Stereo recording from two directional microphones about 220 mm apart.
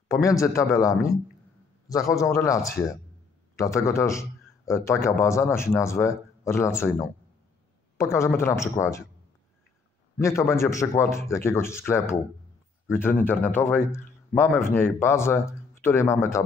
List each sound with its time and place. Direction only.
0.1 s a man's voice: 15° left (ahead or behind)
10.1 s a man's voice: 10° left (ahead or behind)